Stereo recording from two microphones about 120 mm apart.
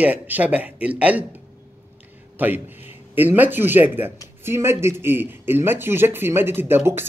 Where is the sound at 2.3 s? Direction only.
15° right (ahead or behind).